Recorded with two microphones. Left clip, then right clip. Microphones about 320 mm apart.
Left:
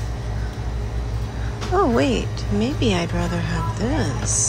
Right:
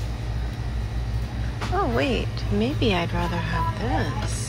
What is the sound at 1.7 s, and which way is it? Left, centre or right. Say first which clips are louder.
Speech: left 5 dB; centre.